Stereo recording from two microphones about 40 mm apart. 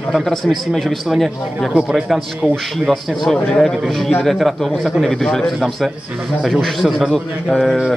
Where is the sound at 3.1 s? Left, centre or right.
Centre.